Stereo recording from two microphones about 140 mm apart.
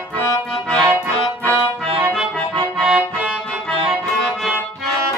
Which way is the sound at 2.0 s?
5° right (ahead or behind).